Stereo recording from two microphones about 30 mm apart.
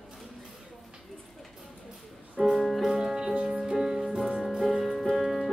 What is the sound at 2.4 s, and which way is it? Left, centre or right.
Music, centre.